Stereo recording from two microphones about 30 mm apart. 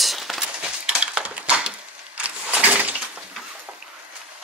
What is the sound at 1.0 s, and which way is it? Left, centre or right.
Cutlery, right.